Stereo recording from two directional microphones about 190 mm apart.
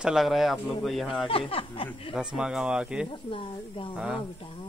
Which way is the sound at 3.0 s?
25° left (ahead or behind).